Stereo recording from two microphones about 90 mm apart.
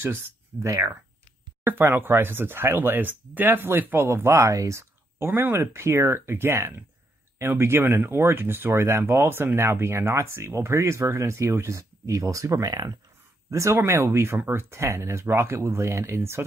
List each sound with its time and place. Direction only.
0.0 s speech: 30° right (ahead or behind); by 12.9 s 45° right (ahead or behind)
13.5 s speech: 30° right (ahead or behind)